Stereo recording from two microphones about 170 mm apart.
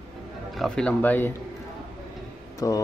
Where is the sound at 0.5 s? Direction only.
5° left (ahead or behind).